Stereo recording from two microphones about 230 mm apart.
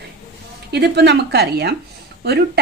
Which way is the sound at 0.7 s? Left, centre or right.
Right.